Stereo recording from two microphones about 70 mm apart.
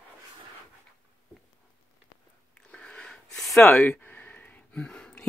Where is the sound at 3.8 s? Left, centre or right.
Left.